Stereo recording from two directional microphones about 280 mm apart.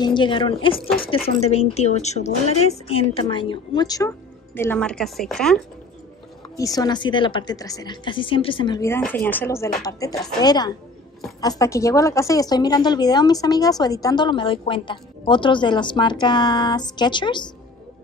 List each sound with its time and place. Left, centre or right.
0.0 s a woman's voice: centre
6.6 s a woman's voice: centre